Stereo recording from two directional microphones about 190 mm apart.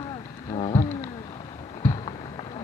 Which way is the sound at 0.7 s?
15° left (ahead or behind).